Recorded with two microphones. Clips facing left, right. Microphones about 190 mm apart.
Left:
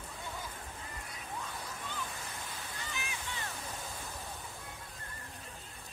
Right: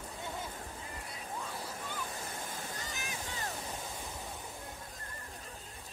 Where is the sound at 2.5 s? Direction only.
40° right (ahead or behind).